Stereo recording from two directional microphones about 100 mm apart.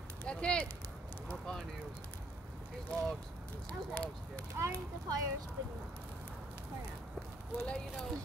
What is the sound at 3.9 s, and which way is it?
Speech, 15° left (ahead or behind).